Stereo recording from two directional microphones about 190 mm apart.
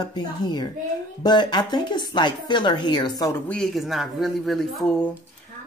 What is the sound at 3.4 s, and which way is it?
Speech, 5° left (ahead or behind).